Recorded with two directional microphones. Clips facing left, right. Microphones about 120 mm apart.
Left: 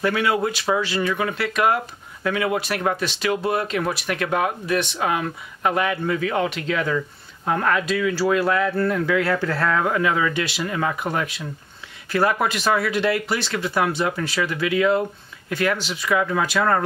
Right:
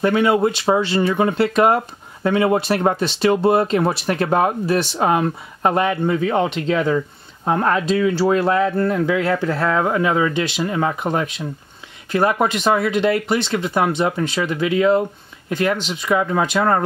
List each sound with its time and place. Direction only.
0.0 s speech: 25° right (ahead or behind)